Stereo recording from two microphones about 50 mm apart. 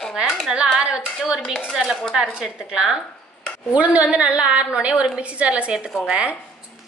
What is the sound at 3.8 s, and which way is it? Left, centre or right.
A woman's voice, right.